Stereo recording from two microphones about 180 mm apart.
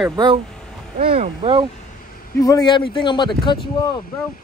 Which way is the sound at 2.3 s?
20° left (ahead or behind).